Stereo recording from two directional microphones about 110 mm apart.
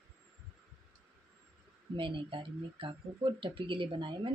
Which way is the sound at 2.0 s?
50° right (ahead or behind).